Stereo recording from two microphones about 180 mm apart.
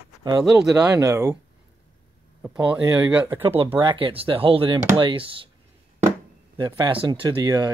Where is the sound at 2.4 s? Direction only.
5° right (ahead or behind).